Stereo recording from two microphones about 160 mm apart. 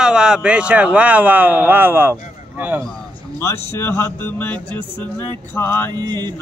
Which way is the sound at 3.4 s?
15° left (ahead or behind).